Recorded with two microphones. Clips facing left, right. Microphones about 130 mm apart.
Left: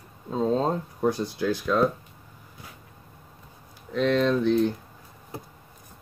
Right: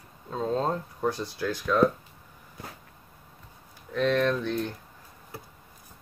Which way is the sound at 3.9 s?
15° left (ahead or behind).